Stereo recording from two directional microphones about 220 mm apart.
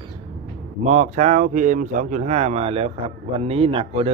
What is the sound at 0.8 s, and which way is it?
Speech, 30° right (ahead or behind).